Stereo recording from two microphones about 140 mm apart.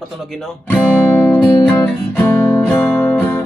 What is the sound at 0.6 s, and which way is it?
Guitar, 10° left (ahead or behind).